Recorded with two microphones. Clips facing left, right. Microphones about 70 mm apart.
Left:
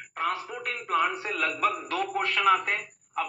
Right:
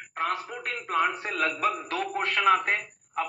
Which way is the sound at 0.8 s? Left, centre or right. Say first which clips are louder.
Even; right.